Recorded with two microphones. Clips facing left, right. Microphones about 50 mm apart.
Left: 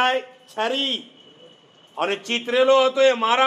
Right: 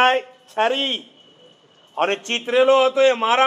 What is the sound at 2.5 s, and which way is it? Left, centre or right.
Speech, right.